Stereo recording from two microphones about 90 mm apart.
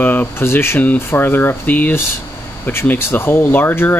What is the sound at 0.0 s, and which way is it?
Speech, 20° left (ahead or behind).